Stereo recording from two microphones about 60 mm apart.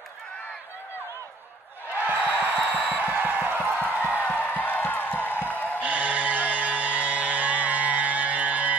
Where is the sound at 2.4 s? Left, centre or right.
Left.